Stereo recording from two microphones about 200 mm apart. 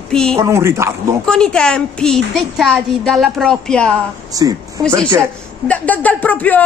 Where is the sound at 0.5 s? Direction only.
15° right (ahead or behind).